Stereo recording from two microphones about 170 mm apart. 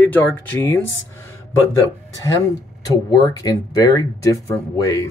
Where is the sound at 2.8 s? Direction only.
20° left (ahead or behind).